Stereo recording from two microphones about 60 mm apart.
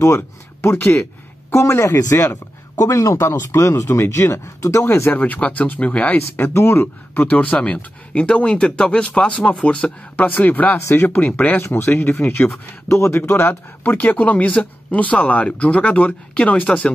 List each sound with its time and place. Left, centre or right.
0.0 s speech: left
1.5 s speech: left
5.1 s speech: left
6.5 s speech: left
7.2 s speech: left
10.1 s speech: left
11.6 s speech: left